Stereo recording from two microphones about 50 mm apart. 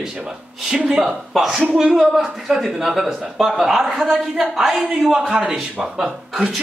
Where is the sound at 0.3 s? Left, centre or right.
Centre.